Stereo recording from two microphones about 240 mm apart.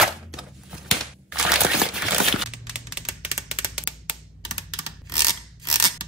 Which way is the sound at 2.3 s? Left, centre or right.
Centre.